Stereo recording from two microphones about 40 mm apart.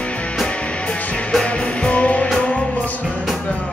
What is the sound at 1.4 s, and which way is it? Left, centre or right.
Music, left.